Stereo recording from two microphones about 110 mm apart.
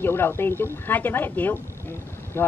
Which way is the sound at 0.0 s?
20° left (ahead or behind).